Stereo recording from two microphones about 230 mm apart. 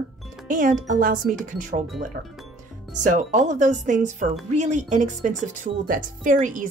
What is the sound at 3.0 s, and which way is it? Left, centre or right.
Speech, right.